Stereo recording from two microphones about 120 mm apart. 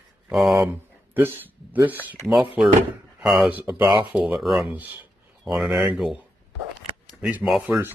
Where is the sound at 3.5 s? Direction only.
20° right (ahead or behind).